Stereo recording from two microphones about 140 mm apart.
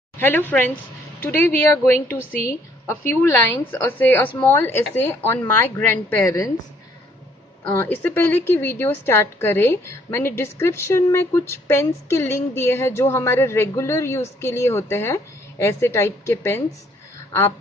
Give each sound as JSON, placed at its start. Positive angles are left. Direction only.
{"t": 0.2, "sound": "a woman's voice", "side_deg": 15}
{"t": 7.8, "sound": "a woman's voice", "side_deg": 15}